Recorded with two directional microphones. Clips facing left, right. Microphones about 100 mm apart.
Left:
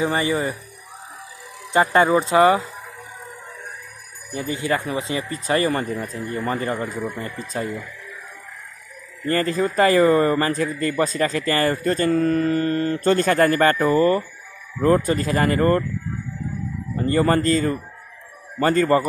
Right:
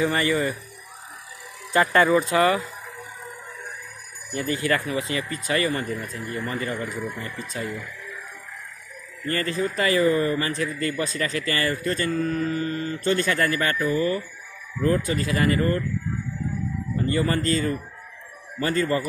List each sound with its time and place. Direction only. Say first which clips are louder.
0.0 s speech: left 1 dB; 20° left (ahead or behind)
1.7 s speech: left 2 dB; 25° left (ahead or behind)
4.4 s speech: left 1 dB; 20° left (ahead or behind)
6.4 s a man's voice: left 5 dB; 35° left (ahead or behind)
9.2 s a man's voice: left 5 dB; 35° left (ahead or behind)
12.2 s mantra: left 6 dB; 60° left (ahead or behind)
13.1 s a man's voice: left 5 dB; 40° left (ahead or behind)
16.9 s a man's voice: left 5 dB; 40° left (ahead or behind)